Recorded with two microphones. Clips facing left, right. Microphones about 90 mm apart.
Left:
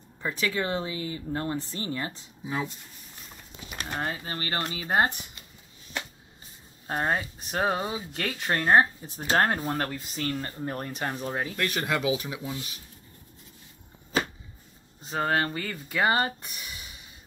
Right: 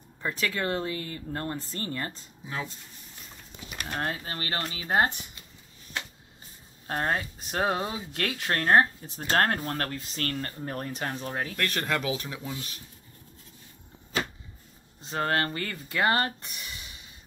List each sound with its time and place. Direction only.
0.3 s speech: 10° left (ahead or behind)
3.9 s speech: 10° left (ahead or behind)
6.9 s speech: 5° left (ahead or behind)
15.0 s speech: 5° left (ahead or behind)